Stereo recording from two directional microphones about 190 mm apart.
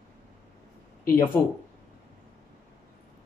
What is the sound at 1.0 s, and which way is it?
Speech, 15° left (ahead or behind).